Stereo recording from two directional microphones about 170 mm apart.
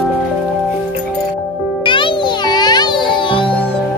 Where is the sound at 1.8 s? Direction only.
30° left (ahead or behind).